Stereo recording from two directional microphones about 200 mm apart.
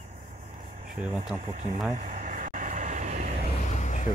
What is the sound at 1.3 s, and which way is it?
Speech, 35° right (ahead or behind).